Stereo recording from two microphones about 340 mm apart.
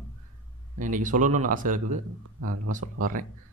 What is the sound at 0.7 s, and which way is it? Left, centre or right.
A man's voice, right.